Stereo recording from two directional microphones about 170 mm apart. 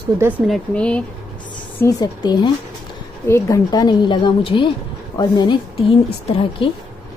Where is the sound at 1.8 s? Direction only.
20° left (ahead or behind).